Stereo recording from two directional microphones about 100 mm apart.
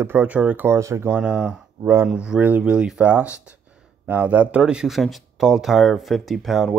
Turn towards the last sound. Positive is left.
turn(degrees=0)  # may be behind; listen again after turning